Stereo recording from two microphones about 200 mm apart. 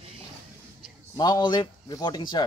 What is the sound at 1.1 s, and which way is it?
A man's voice, 20° left (ahead or behind).